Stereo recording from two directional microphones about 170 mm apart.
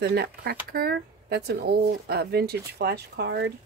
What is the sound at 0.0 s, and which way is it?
Speech, 70° right (ahead or behind).